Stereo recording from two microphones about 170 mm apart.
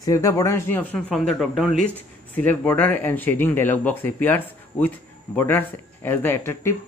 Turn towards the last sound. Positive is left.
turn(degrees=15)  # may be behind; listen again after turning